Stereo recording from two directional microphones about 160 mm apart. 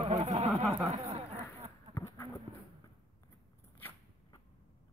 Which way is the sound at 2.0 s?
20° left (ahead or behind).